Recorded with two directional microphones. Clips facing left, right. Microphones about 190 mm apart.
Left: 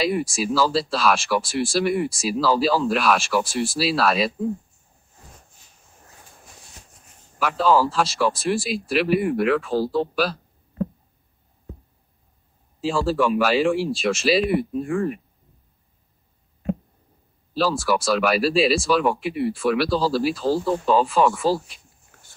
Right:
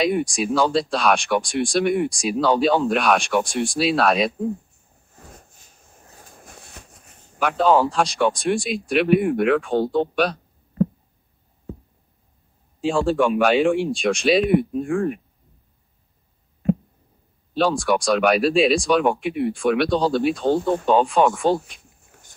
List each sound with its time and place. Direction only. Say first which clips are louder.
0.0 s speech: right 2 dB; centre (ahead or behind)
6.4 s a sound: right 8 dB; 55° right (ahead or behind)
7.4 s speech: right 2 dB; centre (ahead or behind)
12.8 s speech: right 2 dB; centre (ahead or behind)
17.6 s speech: right 2 dB; centre (ahead or behind)